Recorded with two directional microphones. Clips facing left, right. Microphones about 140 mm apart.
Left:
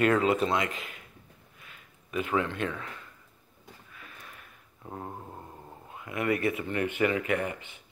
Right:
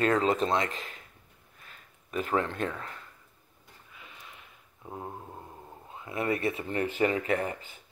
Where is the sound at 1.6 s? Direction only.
40° right (ahead or behind).